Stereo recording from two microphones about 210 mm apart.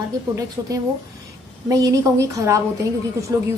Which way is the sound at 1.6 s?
15° right (ahead or behind).